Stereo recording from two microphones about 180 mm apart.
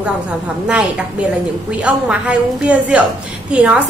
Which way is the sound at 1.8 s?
5° right (ahead or behind).